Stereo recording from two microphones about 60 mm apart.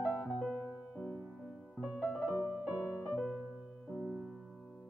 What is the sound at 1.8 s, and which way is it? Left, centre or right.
Piano, right.